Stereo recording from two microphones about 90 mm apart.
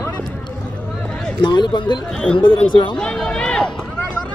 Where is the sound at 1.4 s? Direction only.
55° left (ahead or behind).